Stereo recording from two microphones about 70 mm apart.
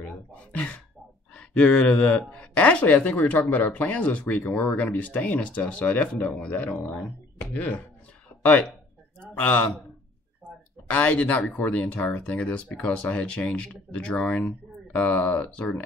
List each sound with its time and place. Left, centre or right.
0.0 s speech: left
7.3 s speech: left
10.9 s speech: centre